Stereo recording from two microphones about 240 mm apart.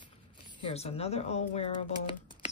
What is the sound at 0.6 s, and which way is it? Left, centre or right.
Speech, left.